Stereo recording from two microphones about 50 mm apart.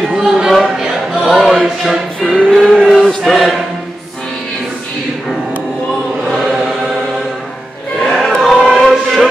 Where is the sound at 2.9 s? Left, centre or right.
Centre.